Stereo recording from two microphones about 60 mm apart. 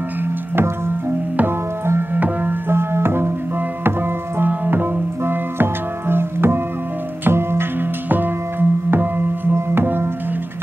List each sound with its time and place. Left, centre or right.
2.1 s music: right
2.7 s music: right
4.4 s music: right